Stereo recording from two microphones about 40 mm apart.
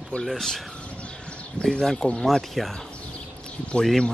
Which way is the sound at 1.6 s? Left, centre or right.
Left.